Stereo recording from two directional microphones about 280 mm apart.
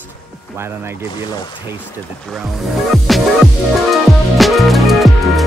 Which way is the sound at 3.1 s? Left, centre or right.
Centre.